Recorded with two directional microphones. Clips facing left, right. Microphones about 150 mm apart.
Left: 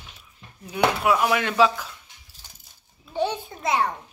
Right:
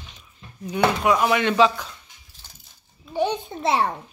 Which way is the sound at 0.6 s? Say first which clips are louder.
Right 1 dB; 5° left (ahead or behind).